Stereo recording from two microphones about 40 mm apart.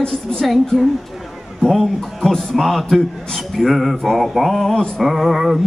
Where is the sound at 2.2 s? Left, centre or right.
Centre.